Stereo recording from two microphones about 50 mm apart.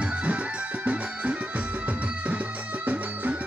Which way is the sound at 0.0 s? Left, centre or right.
Right.